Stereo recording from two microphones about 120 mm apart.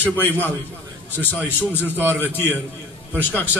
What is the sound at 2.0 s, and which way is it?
Speech, 15° right (ahead or behind).